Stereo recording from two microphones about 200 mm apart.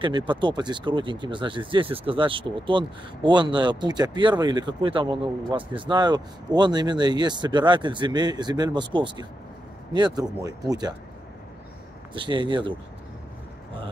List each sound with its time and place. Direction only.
0.0 s speech: 25° right (ahead or behind)
12.1 s speech: 25° right (ahead or behind)